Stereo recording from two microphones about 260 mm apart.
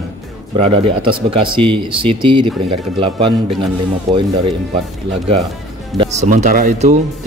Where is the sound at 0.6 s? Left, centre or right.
Right.